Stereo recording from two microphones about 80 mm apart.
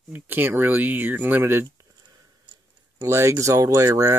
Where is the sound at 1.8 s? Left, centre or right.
Right.